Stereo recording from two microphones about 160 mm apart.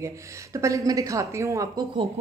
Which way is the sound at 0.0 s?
20° right (ahead or behind).